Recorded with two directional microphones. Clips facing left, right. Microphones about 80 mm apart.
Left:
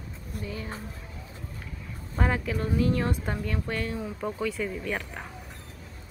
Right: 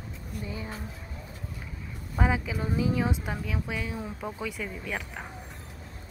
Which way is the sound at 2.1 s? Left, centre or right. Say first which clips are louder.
Even; centre.